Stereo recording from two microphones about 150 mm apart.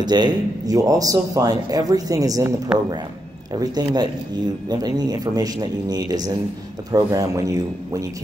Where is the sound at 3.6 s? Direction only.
25° right (ahead or behind).